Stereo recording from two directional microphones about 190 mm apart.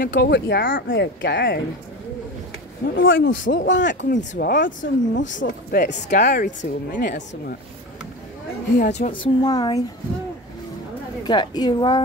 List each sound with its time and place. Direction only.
0.1 s speech: 60° left (ahead or behind)
0.9 s speech: 70° left (ahead or behind)
3.0 s speech: 85° left; by 4.2 s 70° left (ahead or behind)
4.2 s speech: 45° left (ahead or behind)
5.1 s speech: 75° left (ahead or behind)
5.7 s speech: 60° left (ahead or behind)
6.0 s a woman's voice: 40° left (ahead or behind)
7.0 s speech: 60° left (ahead or behind)
8.7 s a woman's voice: 40° left (ahead or behind)
9.1 s speech: 25° left (ahead or behind)
11.2 s speech: 20° left (ahead or behind)